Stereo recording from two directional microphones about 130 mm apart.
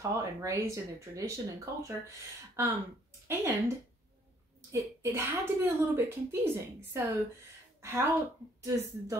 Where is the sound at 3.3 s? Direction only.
20° right (ahead or behind).